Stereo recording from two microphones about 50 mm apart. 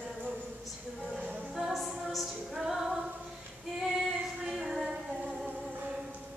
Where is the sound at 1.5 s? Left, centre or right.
Centre.